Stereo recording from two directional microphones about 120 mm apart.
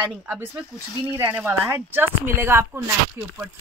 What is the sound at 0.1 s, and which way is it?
A woman's voice, 10° right (ahead or behind).